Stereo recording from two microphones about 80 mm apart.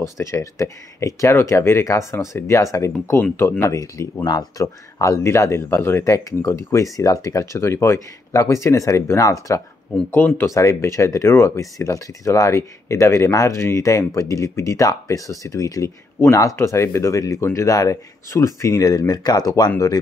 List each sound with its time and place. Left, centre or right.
0.0 s speech: left
3.3 s speech: left
3.7 s speech: left
4.3 s speech: left
5.2 s speech: left
6.0 s speech: left
10.1 s speech: left
10.5 s speech: left